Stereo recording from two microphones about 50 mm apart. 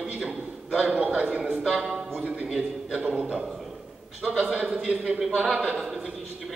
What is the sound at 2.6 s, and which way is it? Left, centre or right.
Speech, right.